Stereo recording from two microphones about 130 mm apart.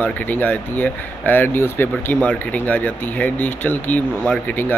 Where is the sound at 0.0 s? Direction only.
10° left (ahead or behind).